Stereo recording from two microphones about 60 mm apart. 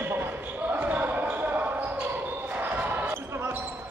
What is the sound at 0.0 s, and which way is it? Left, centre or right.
Basketball bounce, right.